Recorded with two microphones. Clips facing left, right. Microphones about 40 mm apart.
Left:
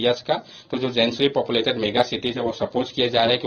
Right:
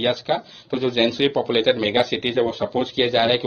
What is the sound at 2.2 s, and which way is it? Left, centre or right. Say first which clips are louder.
Speech: right 4 dB; centre.